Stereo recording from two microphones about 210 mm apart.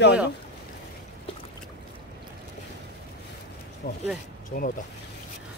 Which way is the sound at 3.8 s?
45° left (ahead or behind).